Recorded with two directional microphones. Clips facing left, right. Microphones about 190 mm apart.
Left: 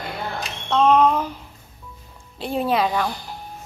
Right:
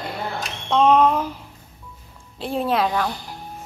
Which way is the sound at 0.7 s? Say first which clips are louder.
Even; 10° right (ahead or behind).